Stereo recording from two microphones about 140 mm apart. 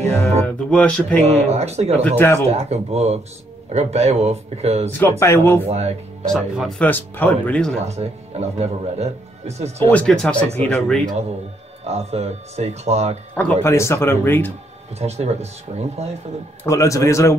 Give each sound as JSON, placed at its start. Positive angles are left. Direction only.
{"t": 0.2, "sound": "speech", "side_deg": 10}
{"t": 1.2, "sound": "speech", "side_deg": -50}
{"t": 2.0, "sound": "speech", "side_deg": 15}
{"t": 2.5, "sound": "speech", "side_deg": -50}
{"t": 5.2, "sound": "speech", "side_deg": 20}
{"t": 5.7, "sound": "speech", "side_deg": -50}
{"t": 6.2, "sound": "speech", "side_deg": 0}
{"t": 6.8, "sound": "speech", "side_deg": 15}
{"t": 7.8, "sound": "speech", "side_deg": -50}
{"t": 9.8, "sound": "speech", "side_deg": 10}
{"t": 11.8, "sound": "speech", "side_deg": -50}
{"t": 13.4, "sound": "speech", "side_deg": 15}
{"t": 15.0, "sound": "speech", "side_deg": -50}
{"t": 16.6, "sound": "a man's voice", "side_deg": 20}